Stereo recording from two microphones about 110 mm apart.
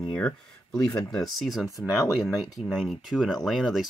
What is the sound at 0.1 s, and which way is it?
Speech, 10° left (ahead or behind).